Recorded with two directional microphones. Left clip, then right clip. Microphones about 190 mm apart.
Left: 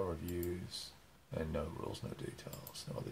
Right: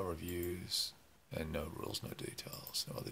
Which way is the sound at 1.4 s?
15° right (ahead or behind).